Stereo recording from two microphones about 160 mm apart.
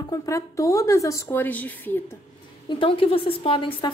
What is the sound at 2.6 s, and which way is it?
A woman's voice, 35° left (ahead or behind).